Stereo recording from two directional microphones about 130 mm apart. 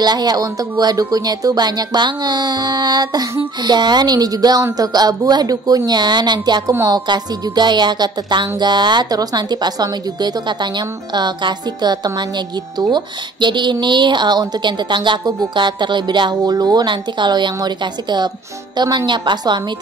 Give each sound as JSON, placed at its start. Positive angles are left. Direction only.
{"t": 0.0, "sound": "a woman's voice", "side_deg": -30}
{"t": 6.7, "sound": "a woman's voice", "side_deg": -20}
{"t": 7.1, "sound": "a woman's voice", "side_deg": -35}